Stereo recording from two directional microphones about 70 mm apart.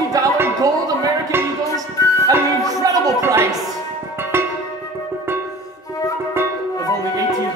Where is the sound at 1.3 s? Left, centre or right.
Right.